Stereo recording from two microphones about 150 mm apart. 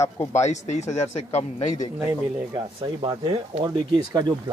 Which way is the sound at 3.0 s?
30° right (ahead or behind).